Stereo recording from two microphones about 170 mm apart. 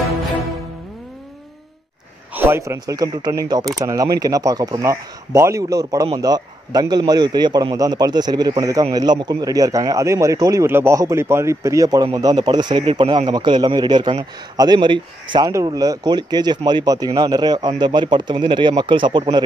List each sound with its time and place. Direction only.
2.3 s speech: 15° right (ahead or behind)